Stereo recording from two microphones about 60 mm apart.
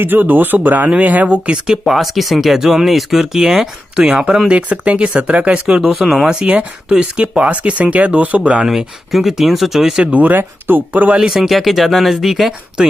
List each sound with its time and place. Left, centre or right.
0.0 s speech: right; by 1.8 s centre
1.9 s speech: centre
6.4 s speech: centre
8.6 s speech: centre
10.1 s speech: right
11.1 s speech: centre